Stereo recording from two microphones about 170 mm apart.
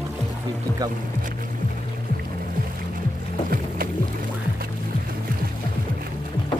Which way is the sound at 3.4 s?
60° right (ahead or behind).